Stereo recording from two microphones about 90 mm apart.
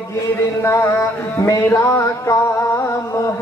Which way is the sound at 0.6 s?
30° left (ahead or behind).